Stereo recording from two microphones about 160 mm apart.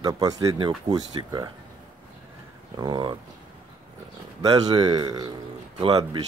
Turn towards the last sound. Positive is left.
turn(degrees=-35)  # may be behind; listen again after turning